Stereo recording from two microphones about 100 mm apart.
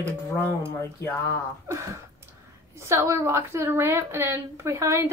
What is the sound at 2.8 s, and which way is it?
A woman's voice, 25° right (ahead or behind).